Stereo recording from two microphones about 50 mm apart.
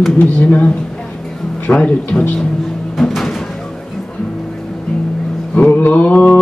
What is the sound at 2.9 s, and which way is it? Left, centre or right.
Music, centre.